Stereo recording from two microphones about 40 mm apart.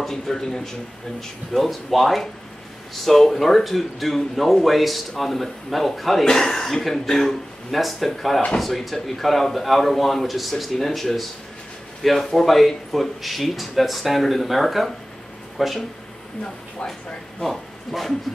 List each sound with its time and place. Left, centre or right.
0.0 s speech: centre
1.5 s speech: centre
6.2 s speech: centre
17.4 s speech: centre